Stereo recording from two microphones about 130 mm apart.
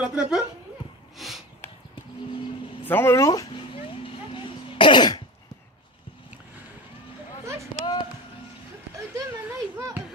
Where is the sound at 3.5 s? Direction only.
45° left (ahead or behind).